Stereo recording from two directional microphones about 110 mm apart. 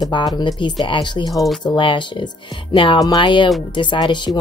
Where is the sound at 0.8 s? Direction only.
45° left (ahead or behind).